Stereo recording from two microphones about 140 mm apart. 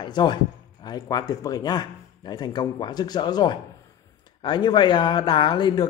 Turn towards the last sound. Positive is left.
turn(degrees=30)  # may be behind; listen again after turning